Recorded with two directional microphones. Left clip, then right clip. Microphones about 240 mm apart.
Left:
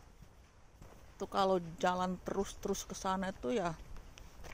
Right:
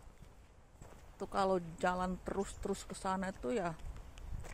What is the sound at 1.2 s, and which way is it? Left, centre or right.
Speech, centre.